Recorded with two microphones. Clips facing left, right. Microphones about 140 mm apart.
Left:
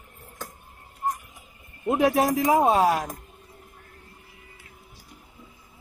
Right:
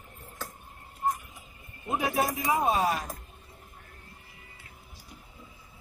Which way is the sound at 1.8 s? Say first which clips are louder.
Left 7 dB; 70° left (ahead or behind).